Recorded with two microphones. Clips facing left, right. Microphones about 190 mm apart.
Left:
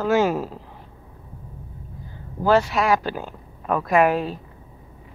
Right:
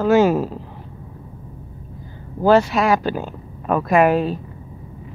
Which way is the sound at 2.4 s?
25° right (ahead or behind).